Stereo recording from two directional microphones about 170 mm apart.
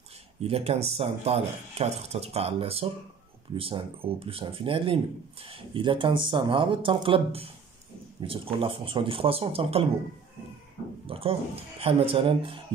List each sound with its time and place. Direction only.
0.4 s speech: 35° right (ahead or behind)
11.1 s speech: 35° right (ahead or behind)